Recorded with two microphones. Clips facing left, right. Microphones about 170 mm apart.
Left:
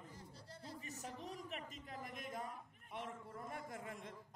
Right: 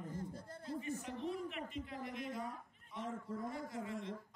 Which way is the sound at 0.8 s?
40° left (ahead or behind).